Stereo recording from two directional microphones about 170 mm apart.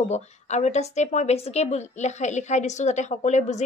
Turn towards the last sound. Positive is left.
turn(degrees=45)  # may be behind; listen again after turning